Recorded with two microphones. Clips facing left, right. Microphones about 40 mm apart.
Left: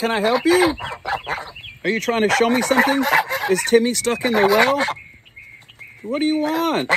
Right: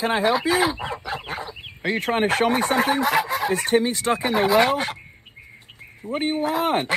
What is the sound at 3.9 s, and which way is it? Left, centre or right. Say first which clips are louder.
Speech: left 2 dB; right.